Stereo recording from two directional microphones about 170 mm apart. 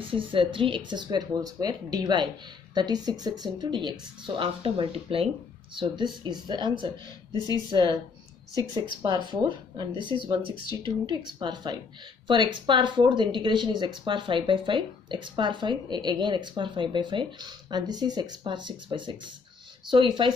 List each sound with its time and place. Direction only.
0.0 s speech: 30° right (ahead or behind)
9.0 s speech: 25° right (ahead or behind)